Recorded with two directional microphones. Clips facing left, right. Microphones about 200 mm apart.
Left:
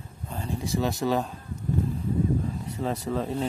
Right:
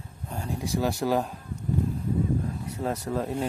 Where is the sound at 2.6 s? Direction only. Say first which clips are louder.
Even; 10° right (ahead or behind).